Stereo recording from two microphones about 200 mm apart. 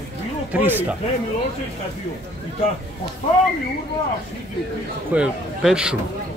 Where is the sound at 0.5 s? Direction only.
10° right (ahead or behind).